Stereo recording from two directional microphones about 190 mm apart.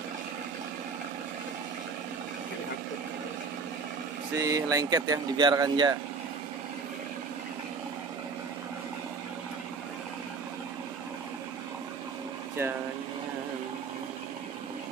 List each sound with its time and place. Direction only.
4.4 s speech: 20° right (ahead or behind)